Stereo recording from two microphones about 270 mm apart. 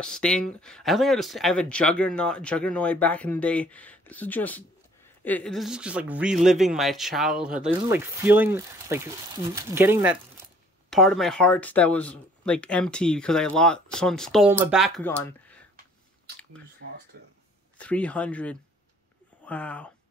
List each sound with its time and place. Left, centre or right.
0.0 s speech: centre
17.1 s a sound: right
17.7 s speech: centre